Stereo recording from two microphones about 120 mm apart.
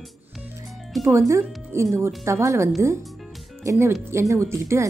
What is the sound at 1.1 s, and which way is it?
Speech, 25° right (ahead or behind).